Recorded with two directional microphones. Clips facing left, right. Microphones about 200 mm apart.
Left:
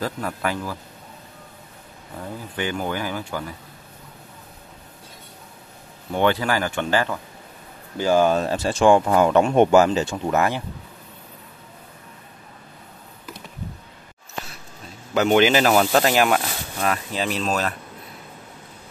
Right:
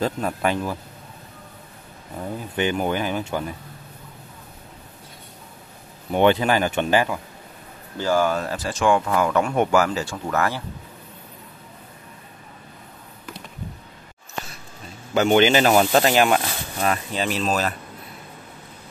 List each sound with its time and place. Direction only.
0.0 s speech: 25° right (ahead or behind)
2.5 s speech: 20° right (ahead or behind)
6.1 s speech: 20° right (ahead or behind)
8.0 s speech: 20° left (ahead or behind)
15.1 s speech: centre (ahead or behind)